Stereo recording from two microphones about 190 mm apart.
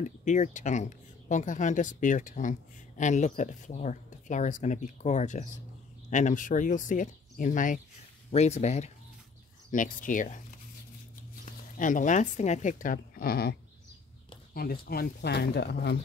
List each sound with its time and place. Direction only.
0.0 s speech: 40° left (ahead or behind)
11.4 s speech: 45° left (ahead or behind); by 16.0 s 60° left (ahead or behind)